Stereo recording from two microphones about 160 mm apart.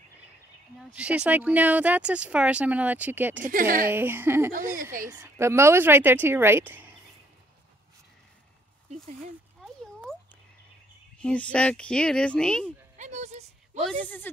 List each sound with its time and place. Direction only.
0.7 s speech: 5° right (ahead or behind)
3.4 s speech: 60° right (ahead or behind)
3.9 s speech: 15° right (ahead or behind)
11.1 s speech: 5° left (ahead or behind)
12.9 s a sound: 45° right (ahead or behind)
13.8 s speech: 10° left (ahead or behind)